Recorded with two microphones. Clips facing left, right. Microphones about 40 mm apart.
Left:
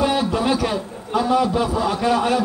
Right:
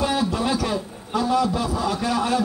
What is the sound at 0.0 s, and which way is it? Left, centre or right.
A man's voice, left.